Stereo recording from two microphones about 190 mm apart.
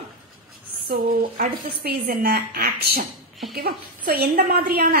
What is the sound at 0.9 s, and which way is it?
A woman's voice, 45° right (ahead or behind).